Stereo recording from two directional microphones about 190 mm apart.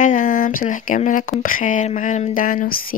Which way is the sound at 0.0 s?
45° left (ahead or behind).